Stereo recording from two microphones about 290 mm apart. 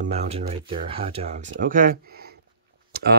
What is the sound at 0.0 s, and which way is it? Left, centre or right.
Speech, right.